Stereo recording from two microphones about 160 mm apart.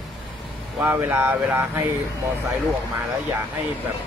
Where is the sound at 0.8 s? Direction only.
10° right (ahead or behind).